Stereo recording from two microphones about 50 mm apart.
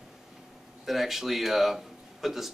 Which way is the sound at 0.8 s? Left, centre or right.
Centre.